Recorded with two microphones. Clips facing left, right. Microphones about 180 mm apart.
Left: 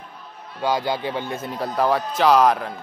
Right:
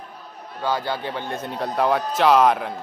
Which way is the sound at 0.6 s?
15° left (ahead or behind).